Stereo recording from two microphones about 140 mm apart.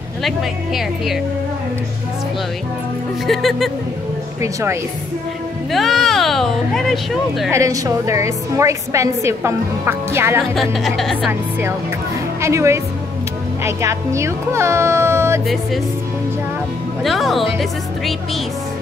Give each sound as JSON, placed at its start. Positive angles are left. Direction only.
{"t": 0.2, "sound": "speech", "side_deg": 0}
{"t": 3.3, "sound": "speech", "side_deg": 0}
{"t": 4.4, "sound": "a woman's voice", "side_deg": -20}
{"t": 5.7, "sound": "speech", "side_deg": 0}
{"t": 7.5, "sound": "a woman's voice", "side_deg": -25}
{"t": 10.5, "sound": "speech", "side_deg": 0}
{"t": 12.4, "sound": "a woman's voice", "side_deg": -20}
{"t": 15.4, "sound": "speech", "side_deg": 0}
{"t": 17.0, "sound": "speech", "side_deg": 0}